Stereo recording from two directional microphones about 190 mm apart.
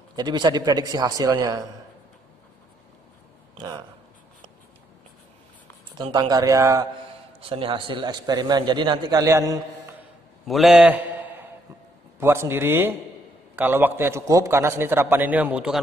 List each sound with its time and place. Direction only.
0.1 s a man's voice: 20° right (ahead or behind)
6.1 s a man's voice: 20° right (ahead or behind)
7.3 s a man's voice: 30° right (ahead or behind)
10.4 s a man's voice: centre (ahead or behind)